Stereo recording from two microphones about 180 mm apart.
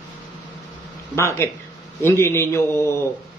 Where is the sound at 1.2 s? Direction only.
15° left (ahead or behind).